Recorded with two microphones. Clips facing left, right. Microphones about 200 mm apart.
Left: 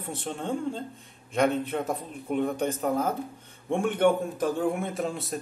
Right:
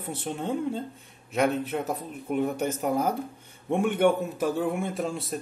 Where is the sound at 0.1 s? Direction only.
10° right (ahead or behind).